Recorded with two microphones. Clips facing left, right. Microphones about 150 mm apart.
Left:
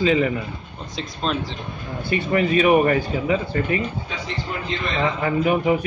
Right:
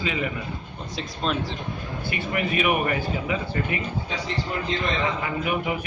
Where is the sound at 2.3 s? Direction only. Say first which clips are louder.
Left 7 dB; 35° left (ahead or behind).